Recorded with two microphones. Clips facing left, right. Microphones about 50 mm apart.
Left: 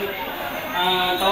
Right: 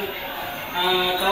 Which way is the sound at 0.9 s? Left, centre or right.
Left.